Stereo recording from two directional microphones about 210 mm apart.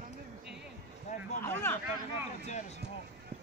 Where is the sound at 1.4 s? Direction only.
10° left (ahead or behind).